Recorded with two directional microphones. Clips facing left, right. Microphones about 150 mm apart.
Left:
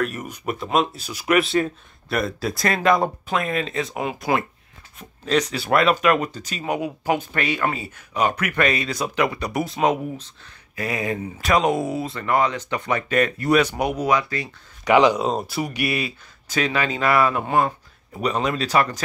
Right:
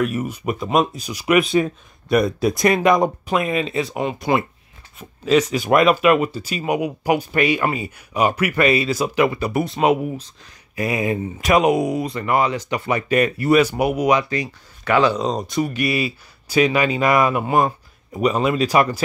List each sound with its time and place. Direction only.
0.0 s speech: 10° right (ahead or behind)
3.3 s speech: 5° right (ahead or behind)
14.0 s speech: 20° right (ahead or behind)
14.9 s speech: 15° left (ahead or behind)
15.9 s speech: 5° right (ahead or behind)